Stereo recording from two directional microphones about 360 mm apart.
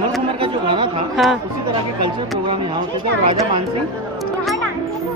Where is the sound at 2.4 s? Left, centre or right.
Centre.